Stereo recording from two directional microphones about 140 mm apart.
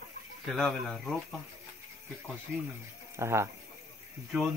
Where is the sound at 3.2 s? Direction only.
20° right (ahead or behind).